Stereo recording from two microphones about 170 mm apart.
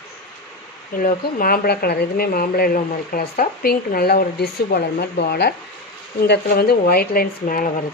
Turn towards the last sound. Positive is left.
turn(degrees=55)  # may be behind; listen again after turning